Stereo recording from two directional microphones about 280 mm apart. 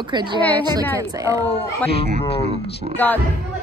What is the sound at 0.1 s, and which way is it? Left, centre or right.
A woman's voice, centre.